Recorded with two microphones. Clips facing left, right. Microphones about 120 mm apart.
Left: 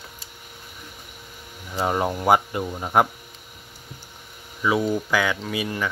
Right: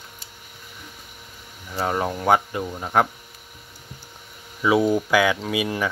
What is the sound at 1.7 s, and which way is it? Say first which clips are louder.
Speech: left 1 dB; 10° left (ahead or behind).